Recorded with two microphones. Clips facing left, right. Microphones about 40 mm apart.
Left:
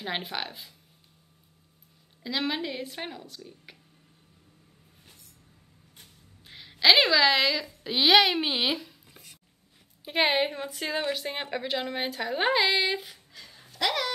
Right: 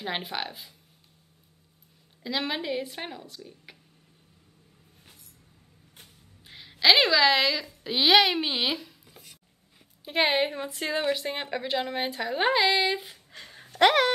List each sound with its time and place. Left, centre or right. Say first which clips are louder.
0.0 s a woman's voice: right 1 dB; centre
2.2 s a woman's voice: even; centre
6.4 s a woman's voice: even; centre
13.3 s a sound: right 4 dB; right